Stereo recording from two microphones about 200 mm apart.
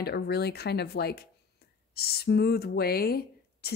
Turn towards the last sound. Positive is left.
turn(degrees=50)  # may be behind; listen again after turning